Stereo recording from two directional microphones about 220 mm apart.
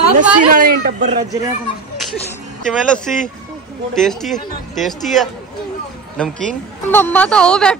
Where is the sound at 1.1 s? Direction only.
15° right (ahead or behind).